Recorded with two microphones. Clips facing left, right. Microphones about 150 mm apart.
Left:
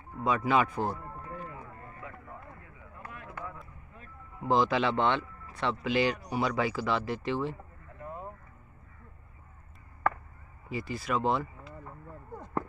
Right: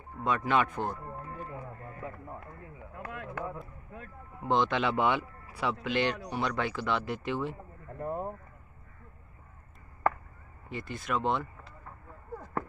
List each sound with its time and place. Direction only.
0.2 s speech: 5° left (ahead or behind)
2.0 s run: 35° right (ahead or behind)
3.0 s a sound: 70° right (ahead or behind)
4.4 s speech: centre (ahead or behind)
8.0 s a sound: 45° right (ahead or behind)
10.7 s speech: 5° left (ahead or behind)